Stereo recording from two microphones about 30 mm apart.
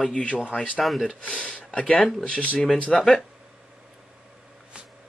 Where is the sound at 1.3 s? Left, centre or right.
Left.